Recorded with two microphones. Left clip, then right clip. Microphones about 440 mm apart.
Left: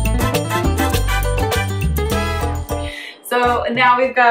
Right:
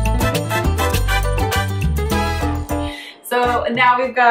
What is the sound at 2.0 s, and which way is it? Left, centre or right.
Music, left.